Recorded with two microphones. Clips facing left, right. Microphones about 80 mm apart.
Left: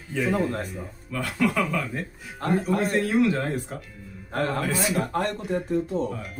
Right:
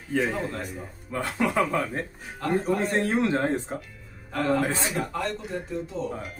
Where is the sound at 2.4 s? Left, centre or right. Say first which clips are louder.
Left 1 dB; left.